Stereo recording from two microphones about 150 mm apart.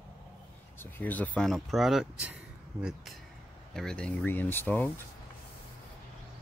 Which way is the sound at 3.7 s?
5° left (ahead or behind).